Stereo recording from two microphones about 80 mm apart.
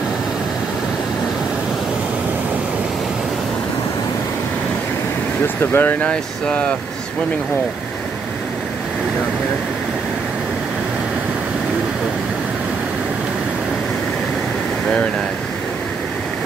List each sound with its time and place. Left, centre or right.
5.6 s speech: left
5.9 s speech: centre